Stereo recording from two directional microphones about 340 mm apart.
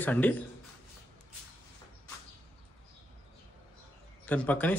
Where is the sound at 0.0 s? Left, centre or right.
Centre.